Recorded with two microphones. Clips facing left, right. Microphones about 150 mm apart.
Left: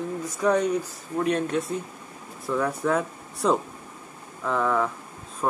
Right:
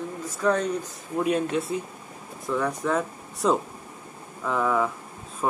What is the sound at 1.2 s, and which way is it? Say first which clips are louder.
Speech: even; 5° right (ahead or behind).